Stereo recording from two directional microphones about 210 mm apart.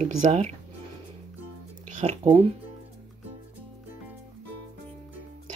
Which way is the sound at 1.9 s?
35° right (ahead or behind).